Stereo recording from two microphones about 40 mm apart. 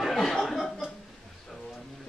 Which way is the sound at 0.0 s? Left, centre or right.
Centre.